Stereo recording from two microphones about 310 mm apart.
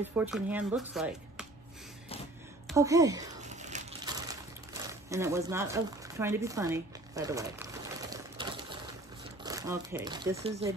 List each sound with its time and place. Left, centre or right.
0.0 s speech: centre
2.7 s speech: centre
3.4 s crushing: right
4.8 s a sound: centre
9.4 s speech: centre